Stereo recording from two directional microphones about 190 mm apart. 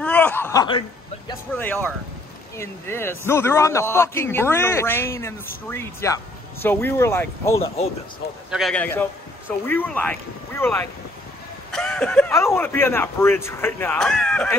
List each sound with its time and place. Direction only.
0.0 s a sound: 10° left (ahead or behind)
1.6 s a man's voice: 10° left (ahead or behind)
7.5 s speech: 30° left (ahead or behind)
8.5 s a man's voice: centre (ahead or behind)
11.7 s a sound: 5° left (ahead or behind)
12.3 s a man's voice: 15° left (ahead or behind)